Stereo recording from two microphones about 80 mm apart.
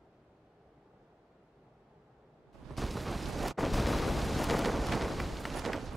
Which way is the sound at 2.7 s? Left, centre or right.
Centre.